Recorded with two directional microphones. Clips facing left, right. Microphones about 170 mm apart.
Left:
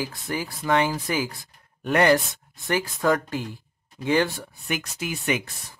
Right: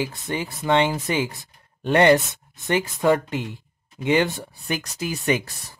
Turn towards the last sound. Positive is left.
turn(degrees=-35)  # may be behind; listen again after turning